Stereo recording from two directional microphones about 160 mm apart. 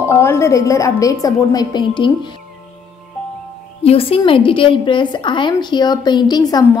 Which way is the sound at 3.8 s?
40° left (ahead or behind).